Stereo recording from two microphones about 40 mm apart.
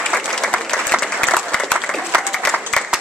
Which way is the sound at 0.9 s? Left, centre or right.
Centre.